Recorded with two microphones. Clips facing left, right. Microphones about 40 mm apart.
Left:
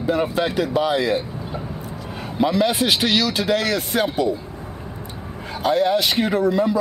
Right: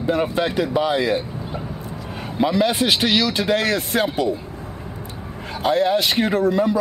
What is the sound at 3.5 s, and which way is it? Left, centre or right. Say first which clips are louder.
Speech: right 1 dB; right.